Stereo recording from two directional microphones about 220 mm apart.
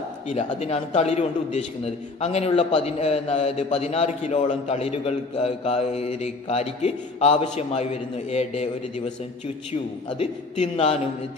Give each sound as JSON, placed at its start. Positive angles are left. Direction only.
{"t": 0.3, "sound": "a man's voice", "side_deg": 30}
{"t": 10.1, "sound": "a man's voice", "side_deg": 30}